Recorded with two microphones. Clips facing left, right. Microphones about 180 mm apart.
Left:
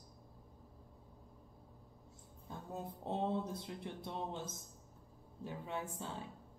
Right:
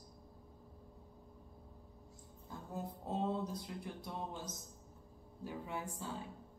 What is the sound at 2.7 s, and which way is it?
Speech, 25° left (ahead or behind).